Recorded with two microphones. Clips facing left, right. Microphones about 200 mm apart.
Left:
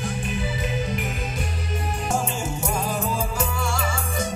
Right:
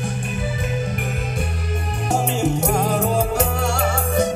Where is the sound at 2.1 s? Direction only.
65° right (ahead or behind).